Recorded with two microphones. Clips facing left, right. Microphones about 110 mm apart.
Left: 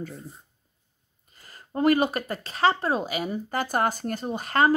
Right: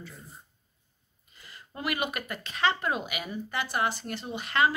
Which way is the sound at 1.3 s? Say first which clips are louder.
Left 11 dB; 40° left (ahead or behind).